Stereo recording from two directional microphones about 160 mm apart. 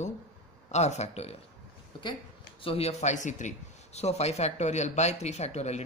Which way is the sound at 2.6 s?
40° left (ahead or behind).